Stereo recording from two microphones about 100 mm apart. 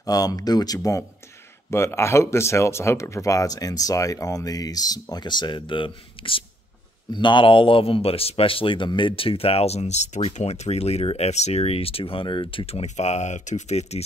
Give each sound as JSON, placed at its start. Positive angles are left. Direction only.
{"t": 0.0, "sound": "speech", "side_deg": 40}
{"t": 1.7, "sound": "speech", "side_deg": 25}
{"t": 13.7, "sound": "speech", "side_deg": 90}